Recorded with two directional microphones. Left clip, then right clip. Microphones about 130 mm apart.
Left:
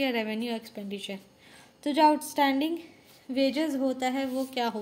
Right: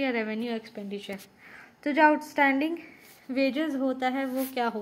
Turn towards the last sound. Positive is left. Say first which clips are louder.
# right 1 dB
turn(degrees=0)  # may be behind; listen again after turning